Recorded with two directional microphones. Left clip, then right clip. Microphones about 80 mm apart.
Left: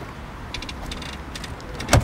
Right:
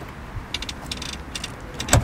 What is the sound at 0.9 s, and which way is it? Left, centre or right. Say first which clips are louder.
Vehicle: right 2 dB; right.